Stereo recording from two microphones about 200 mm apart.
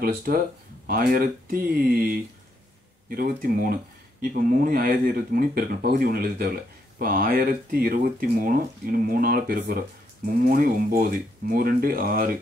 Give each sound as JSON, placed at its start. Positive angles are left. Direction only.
{"t": 0.0, "sound": "speech", "side_deg": -45}